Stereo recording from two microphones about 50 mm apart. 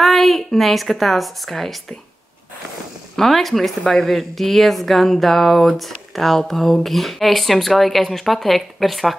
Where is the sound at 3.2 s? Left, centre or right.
Centre.